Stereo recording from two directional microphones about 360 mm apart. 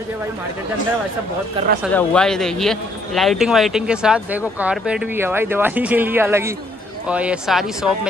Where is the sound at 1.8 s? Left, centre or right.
Centre.